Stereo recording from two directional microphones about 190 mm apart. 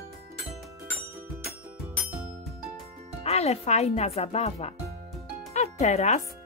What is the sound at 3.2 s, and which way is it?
Speech, 35° left (ahead or behind).